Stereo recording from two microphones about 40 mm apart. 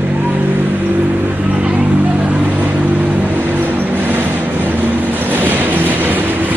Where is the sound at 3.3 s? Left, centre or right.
Right.